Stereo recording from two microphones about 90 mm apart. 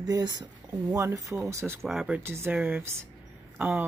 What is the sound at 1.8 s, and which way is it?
Speech, 5° right (ahead or behind).